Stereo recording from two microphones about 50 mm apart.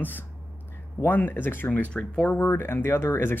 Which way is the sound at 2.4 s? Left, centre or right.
Left.